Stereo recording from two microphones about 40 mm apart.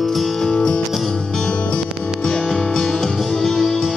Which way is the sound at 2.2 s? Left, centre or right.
Centre.